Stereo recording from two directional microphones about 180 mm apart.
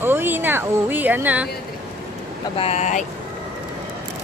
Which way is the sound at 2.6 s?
40° left (ahead or behind).